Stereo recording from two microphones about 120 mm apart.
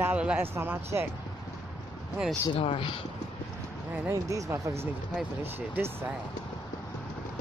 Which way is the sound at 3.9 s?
20° right (ahead or behind).